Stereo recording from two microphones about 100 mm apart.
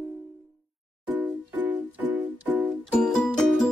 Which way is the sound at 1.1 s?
15° right (ahead or behind).